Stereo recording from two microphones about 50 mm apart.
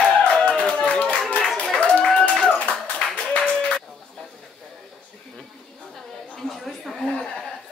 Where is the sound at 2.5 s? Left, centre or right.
Left.